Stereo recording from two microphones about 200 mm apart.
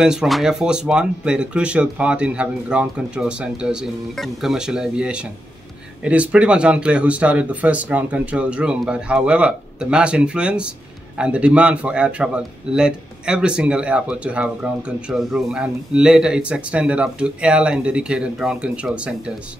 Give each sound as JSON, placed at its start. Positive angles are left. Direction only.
{"t": 0.0, "sound": "speech", "side_deg": 0}